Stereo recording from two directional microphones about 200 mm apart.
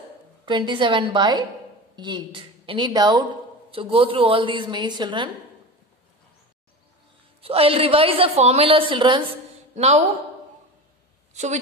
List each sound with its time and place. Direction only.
0.5 s a woman's voice: 25° right (ahead or behind)
7.4 s a woman's voice: 30° right (ahead or behind)
11.3 s a woman's voice: 35° right (ahead or behind)